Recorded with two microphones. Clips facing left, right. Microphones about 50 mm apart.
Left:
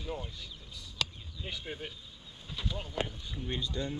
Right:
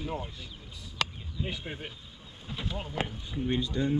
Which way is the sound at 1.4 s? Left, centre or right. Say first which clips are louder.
Right 3 dB; right.